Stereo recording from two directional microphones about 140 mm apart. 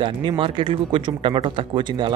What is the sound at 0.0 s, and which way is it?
Speech, 35° right (ahead or behind).